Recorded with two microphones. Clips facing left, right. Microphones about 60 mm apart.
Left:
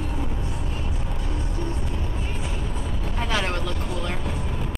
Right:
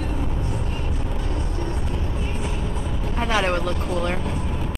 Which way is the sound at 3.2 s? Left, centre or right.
Centre.